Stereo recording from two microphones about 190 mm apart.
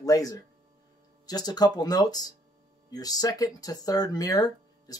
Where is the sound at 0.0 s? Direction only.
20° left (ahead or behind).